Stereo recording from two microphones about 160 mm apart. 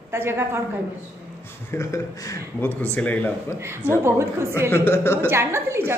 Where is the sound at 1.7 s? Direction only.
20° left (ahead or behind).